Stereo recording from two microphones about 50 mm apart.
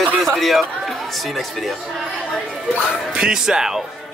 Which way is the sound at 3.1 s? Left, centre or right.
Centre.